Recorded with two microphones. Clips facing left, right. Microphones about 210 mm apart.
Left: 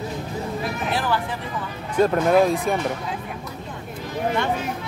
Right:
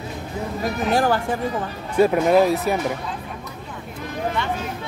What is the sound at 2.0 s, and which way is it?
Speech, 10° right (ahead or behind).